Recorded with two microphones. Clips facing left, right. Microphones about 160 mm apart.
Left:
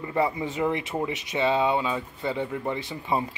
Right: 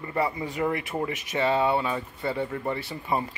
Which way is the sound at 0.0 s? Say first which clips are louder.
Left 2 dB; 20° left (ahead or behind).